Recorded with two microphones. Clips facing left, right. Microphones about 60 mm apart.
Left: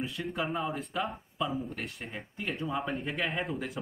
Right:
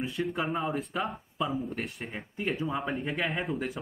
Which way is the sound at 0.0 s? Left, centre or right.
Centre.